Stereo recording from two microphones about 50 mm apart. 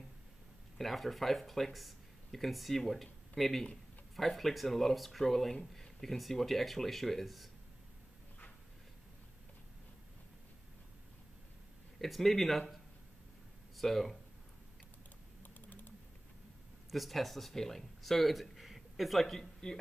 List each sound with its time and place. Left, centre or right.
0.7 s speech: centre
12.0 s speech: centre
15.4 s typing: left
16.9 s speech: centre